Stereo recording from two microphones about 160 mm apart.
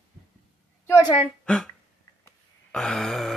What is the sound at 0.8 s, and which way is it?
Speech, 20° left (ahead or behind).